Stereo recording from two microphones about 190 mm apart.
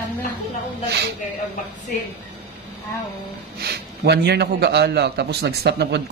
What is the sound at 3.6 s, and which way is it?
A man's voice, 60° right (ahead or behind).